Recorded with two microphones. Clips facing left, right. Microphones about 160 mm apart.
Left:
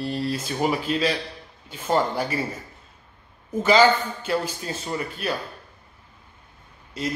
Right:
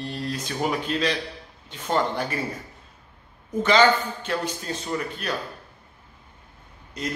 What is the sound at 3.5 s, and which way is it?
A man's voice, 10° left (ahead or behind).